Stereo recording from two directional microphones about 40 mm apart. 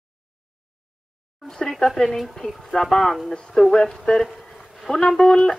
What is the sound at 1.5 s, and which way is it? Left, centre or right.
Speech, centre.